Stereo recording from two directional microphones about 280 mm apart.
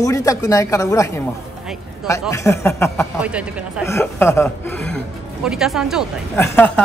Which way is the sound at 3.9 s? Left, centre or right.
Centre.